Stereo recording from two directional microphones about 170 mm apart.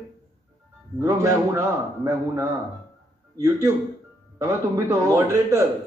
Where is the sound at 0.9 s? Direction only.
15° right (ahead or behind).